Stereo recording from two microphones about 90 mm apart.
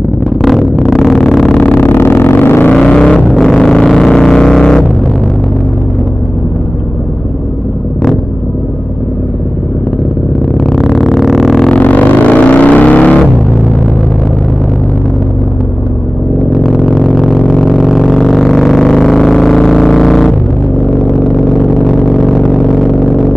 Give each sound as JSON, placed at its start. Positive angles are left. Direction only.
{"t": 0.4, "sound": "a sound", "side_deg": 0}
{"t": 1.6, "sound": "vehicle", "side_deg": 20}
{"t": 2.7, "sound": "vehicle", "side_deg": 10}
{"t": 10.6, "sound": "a sound", "side_deg": 5}
{"t": 11.8, "sound": "music", "side_deg": 15}
{"t": 16.6, "sound": "vehicle", "side_deg": 0}